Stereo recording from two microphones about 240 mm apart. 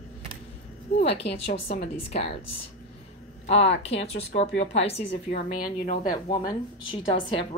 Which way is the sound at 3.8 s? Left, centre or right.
Left.